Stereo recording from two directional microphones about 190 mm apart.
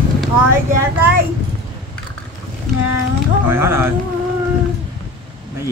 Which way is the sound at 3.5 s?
10° right (ahead or behind).